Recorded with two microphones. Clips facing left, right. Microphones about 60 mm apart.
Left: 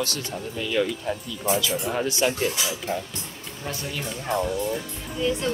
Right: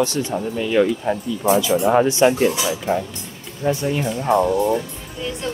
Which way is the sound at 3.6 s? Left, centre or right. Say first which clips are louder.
Right 12 dB; right.